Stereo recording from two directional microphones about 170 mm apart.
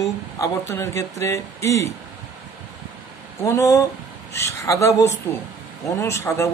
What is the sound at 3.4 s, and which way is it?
Speech, 20° left (ahead or behind).